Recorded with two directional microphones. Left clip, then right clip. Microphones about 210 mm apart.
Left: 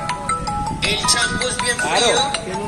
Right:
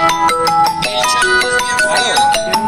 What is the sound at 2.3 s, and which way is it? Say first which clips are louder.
Music: right 11 dB; 40° right (ahead or behind).